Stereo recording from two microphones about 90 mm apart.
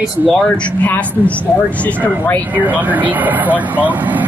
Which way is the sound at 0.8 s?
15° left (ahead or behind).